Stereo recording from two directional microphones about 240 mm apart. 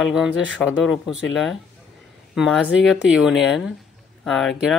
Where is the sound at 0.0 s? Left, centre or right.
Centre.